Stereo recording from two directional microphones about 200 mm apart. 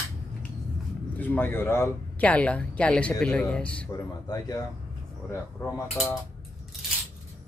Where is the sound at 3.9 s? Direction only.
20° left (ahead or behind).